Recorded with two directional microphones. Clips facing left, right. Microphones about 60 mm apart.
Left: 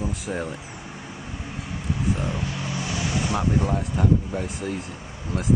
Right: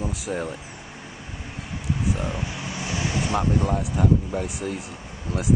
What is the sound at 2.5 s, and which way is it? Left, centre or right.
Vehicle, centre.